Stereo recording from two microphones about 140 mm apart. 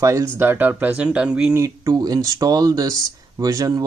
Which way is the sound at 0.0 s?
20° right (ahead or behind).